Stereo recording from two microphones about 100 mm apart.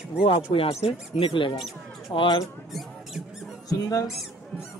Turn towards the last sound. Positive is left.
turn(degrees=35)  # may be behind; listen again after turning